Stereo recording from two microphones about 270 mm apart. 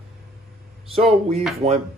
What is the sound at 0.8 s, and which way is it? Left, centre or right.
Speech, right.